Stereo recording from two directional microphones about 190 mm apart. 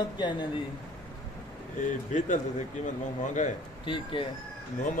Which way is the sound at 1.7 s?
40° left (ahead or behind).